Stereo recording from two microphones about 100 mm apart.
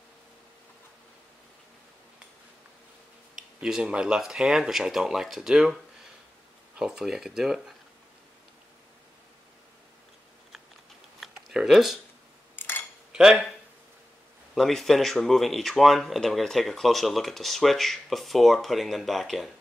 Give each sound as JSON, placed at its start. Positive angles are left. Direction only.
{"t": 3.3, "sound": "speech", "side_deg": -5}
{"t": 6.8, "sound": "speech", "side_deg": -5}
{"t": 11.1, "sound": "a sound", "side_deg": 0}
{"t": 12.5, "sound": "cutlery", "side_deg": 20}
{"t": 13.1, "sound": "speech", "side_deg": -5}